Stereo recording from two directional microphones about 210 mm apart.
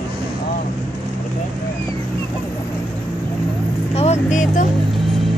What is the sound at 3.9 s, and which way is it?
Vehicle, 30° left (ahead or behind).